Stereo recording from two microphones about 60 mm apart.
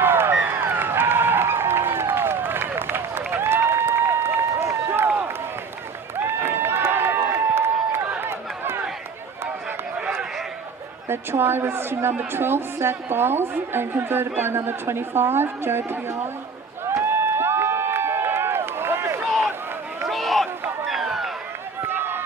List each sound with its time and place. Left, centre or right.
0.0 s a sound: right
8.2 s run: right
11.1 s a woman's voice: right
16.8 s run: right
20.1 s a sound: centre
21.8 s run: right